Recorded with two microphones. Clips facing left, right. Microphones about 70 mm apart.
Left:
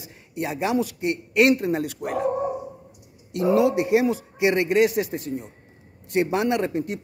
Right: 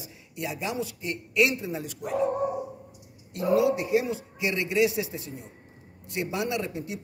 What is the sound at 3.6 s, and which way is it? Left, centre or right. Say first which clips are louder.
A man's voice: left 5 dB; left.